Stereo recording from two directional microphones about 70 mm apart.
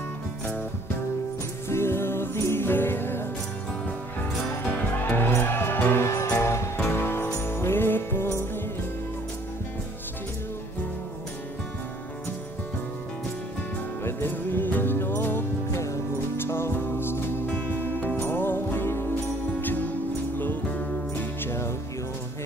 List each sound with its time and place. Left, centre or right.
1.7 s music: left
5.0 s music: left
6.3 s music: left
14.0 s music: left
17.5 s music: left
20.3 s music: left